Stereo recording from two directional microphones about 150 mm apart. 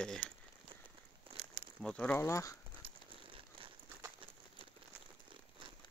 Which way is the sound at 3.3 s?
35° right (ahead or behind).